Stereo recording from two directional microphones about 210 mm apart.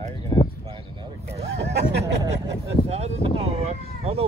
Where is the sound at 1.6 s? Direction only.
55° right (ahead or behind).